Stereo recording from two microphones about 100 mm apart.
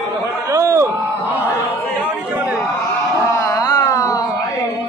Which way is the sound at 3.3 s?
35° left (ahead or behind).